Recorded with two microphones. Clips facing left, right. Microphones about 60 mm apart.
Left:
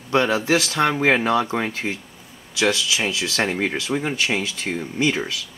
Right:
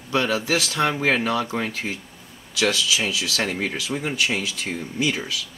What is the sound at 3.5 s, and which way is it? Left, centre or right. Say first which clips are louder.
Speech: left 3 dB; left.